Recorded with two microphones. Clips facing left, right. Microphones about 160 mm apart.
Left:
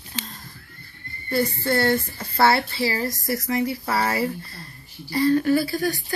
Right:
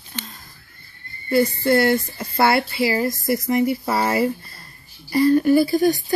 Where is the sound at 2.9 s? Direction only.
20° right (ahead or behind).